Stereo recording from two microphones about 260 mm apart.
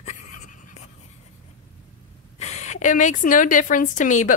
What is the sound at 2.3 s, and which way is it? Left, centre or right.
A woman's voice, left.